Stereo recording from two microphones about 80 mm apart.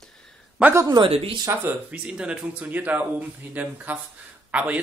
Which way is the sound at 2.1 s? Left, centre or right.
Centre.